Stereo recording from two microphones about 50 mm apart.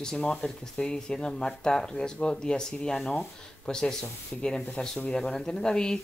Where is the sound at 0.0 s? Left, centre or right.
Centre.